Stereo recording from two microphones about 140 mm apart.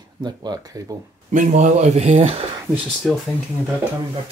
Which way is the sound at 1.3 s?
65° right (ahead or behind).